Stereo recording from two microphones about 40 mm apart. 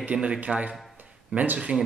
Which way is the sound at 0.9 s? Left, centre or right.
Right.